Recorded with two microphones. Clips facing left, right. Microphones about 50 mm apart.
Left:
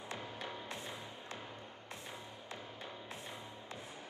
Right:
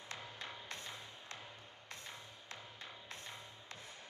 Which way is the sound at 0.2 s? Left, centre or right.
Centre.